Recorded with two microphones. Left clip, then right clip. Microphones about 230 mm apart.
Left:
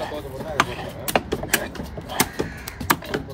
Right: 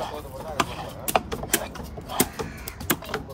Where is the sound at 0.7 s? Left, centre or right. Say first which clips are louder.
Left 3 dB; left.